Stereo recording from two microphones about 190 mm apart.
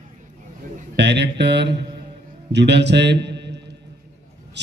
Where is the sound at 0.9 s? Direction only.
65° right (ahead or behind).